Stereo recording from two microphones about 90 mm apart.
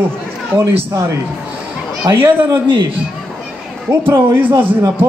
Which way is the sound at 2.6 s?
60° right (ahead or behind).